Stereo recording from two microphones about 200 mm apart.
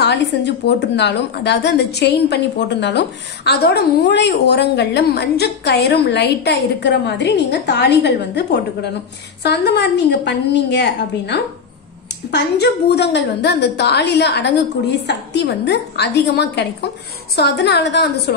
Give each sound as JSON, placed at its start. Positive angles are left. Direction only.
{"t": 0.0, "sound": "a woman's voice", "side_deg": 60}